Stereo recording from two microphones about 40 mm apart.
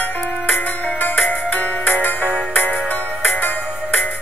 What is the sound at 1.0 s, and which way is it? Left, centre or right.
Music, left.